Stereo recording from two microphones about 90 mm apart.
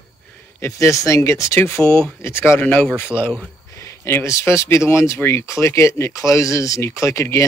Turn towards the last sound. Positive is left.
turn(degrees=35)  # may be behind; listen again after turning